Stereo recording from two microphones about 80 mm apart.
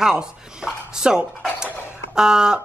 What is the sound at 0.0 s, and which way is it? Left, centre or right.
Speech, centre.